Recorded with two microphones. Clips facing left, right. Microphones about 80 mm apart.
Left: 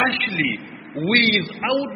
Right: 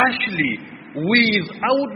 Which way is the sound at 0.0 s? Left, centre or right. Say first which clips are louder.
Right 3 dB; centre.